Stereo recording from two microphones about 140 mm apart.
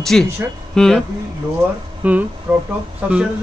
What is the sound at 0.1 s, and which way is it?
Speech, 5° left (ahead or behind).